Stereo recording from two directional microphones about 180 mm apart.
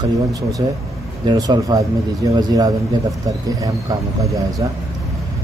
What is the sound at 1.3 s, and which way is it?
A man's voice, 20° right (ahead or behind).